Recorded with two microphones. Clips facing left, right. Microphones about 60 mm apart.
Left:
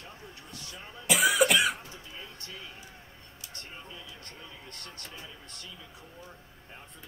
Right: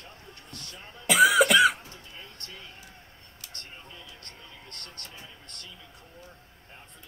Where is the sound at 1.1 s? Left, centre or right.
Right.